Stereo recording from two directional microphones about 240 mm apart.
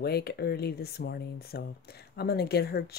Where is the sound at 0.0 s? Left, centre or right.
Left.